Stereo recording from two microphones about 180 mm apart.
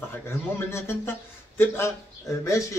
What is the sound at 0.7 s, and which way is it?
Speech, 15° left (ahead or behind).